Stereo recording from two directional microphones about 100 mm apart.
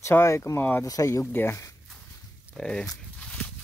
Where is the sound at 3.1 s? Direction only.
10° left (ahead or behind).